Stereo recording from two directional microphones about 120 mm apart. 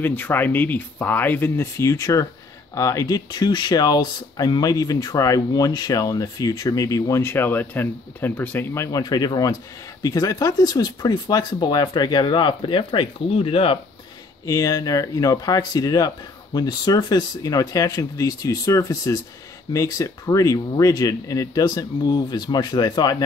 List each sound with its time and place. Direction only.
0.0 s speech: 15° left (ahead or behind); by 13.7 s 50° left (ahead or behind)
14.4 s speech: 30° left (ahead or behind)